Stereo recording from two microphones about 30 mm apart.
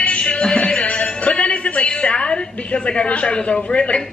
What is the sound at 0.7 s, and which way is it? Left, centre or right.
Music, left.